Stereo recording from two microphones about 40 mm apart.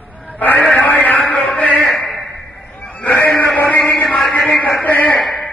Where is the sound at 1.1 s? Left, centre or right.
Left.